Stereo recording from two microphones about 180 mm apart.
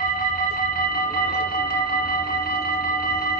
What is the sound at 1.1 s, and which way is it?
Music, 55° left (ahead or behind).